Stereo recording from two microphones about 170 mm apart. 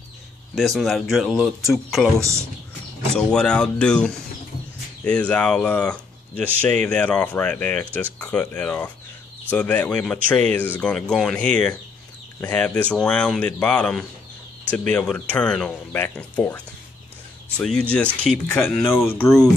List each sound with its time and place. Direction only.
0.6 s speech: centre (ahead or behind)
2.1 s a man's voice: 15° right (ahead or behind)
3.2 s speech: 5° left (ahead or behind)